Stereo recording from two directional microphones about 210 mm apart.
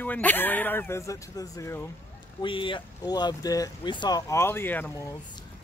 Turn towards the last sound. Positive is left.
turn(degrees=10)  # may be behind; listen again after turning